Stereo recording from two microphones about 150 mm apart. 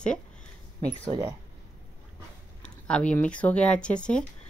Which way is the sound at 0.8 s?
25° right (ahead or behind).